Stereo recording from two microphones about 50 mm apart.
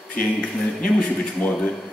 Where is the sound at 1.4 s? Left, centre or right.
Left.